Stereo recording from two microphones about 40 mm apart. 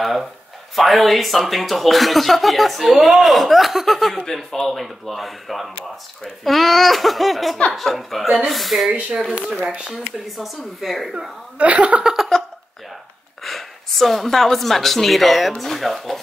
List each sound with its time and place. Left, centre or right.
0.0 s speech: centre
11.5 s speech: right
12.0 s a sound: centre
13.4 s speech: centre